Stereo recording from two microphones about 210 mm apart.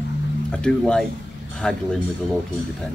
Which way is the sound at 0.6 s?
5° left (ahead or behind).